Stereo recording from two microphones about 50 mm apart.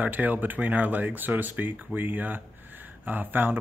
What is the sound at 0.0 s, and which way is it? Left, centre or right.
Speech, right.